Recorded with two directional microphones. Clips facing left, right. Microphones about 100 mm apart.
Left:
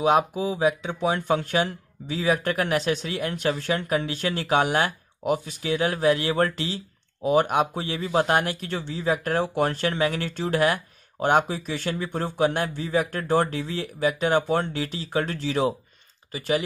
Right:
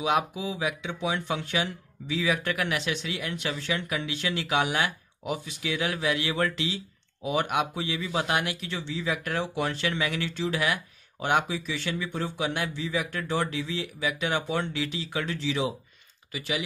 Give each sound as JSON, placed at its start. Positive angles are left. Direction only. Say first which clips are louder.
{"t": 0.0, "sound": "a man's voice", "louder": "left 6 dB", "side_deg": 40}